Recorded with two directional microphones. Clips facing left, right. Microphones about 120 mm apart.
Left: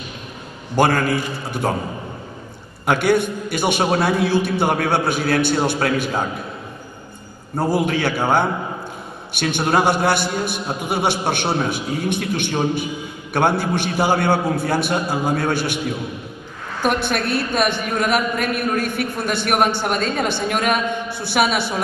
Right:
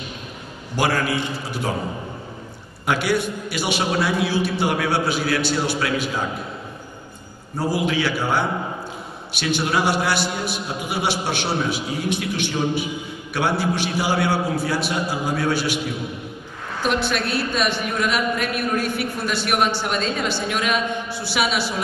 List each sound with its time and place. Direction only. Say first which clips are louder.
0.7 s a woman's voice: left 4 dB; 50° left (ahead or behind)
2.9 s a woman's voice: left 4 dB; 50° left (ahead or behind)
7.5 s a woman's voice: left 3 dB; 50° left (ahead or behind)
16.8 s a woman's voice: left 2 dB; 50° left (ahead or behind)